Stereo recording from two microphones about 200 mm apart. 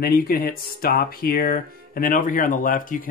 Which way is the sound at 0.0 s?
50° left (ahead or behind).